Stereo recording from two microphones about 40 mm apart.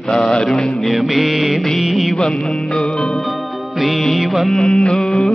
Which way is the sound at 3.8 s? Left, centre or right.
Centre.